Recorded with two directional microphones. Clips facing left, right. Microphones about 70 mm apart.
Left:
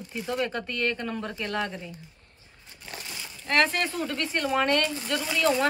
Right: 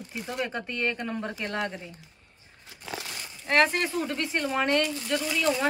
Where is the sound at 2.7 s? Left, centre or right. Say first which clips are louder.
Right 1 dB; right.